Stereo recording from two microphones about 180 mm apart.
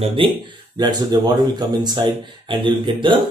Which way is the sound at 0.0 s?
30° right (ahead or behind).